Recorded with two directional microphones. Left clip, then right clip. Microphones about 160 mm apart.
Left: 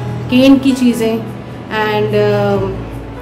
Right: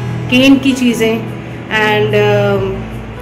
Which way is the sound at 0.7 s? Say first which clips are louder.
Right 1 dB; 5° right (ahead or behind).